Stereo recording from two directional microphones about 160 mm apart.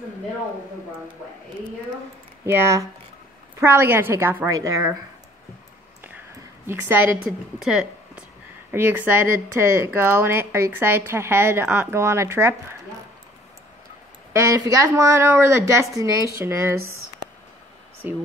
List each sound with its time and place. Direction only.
2.4 s a woman's voice: 15° right (ahead or behind)
6.7 s a woman's voice: 15° right (ahead or behind)
14.3 s a woman's voice: 20° right (ahead or behind)